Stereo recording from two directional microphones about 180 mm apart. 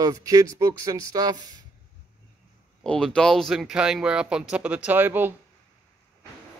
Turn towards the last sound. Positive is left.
turn(degrees=-10)  # may be behind; listen again after turning